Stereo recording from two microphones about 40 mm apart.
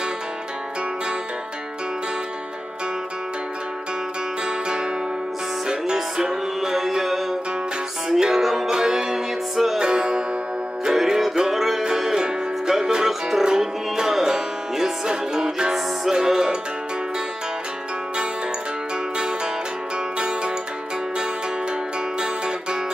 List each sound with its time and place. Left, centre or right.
4.5 s music: right
5.9 s music: centre
9.8 s music: right
10.9 s music: centre
19.1 s music: right